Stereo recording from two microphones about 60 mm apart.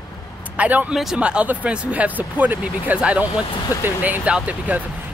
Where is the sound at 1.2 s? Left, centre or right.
Centre.